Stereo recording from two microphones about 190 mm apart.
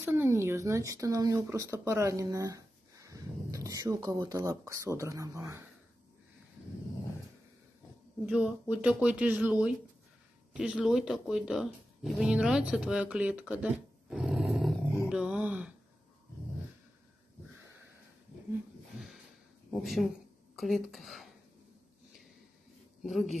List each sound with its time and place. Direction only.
0.0 s speech: 10° right (ahead or behind)
8.3 s speech: 5° right (ahead or behind)
15.0 s a sound: 5° right (ahead or behind)
19.7 s speech: centre (ahead or behind)
23.0 s speech: centre (ahead or behind)